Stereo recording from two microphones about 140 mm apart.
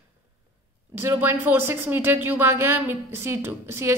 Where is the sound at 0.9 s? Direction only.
15° right (ahead or behind).